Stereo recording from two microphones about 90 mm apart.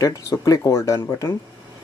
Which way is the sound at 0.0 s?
40° left (ahead or behind).